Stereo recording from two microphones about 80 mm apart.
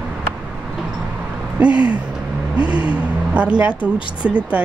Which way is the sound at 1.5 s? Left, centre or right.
Centre.